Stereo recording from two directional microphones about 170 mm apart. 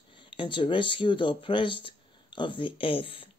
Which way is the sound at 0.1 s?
30° left (ahead or behind).